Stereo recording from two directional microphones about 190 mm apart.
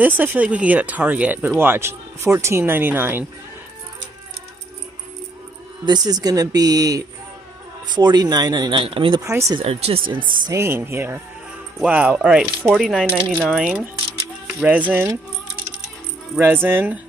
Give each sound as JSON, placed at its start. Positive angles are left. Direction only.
{"t": 0.0, "sound": "speech", "side_deg": -10}
{"t": 5.9, "sound": "speech", "side_deg": -20}
{"t": 9.2, "sound": "speech", "side_deg": -15}
{"t": 9.6, "sound": "speech", "side_deg": -30}
{"t": 10.4, "sound": "speech", "side_deg": -15}
{"t": 16.3, "sound": "speech", "side_deg": -10}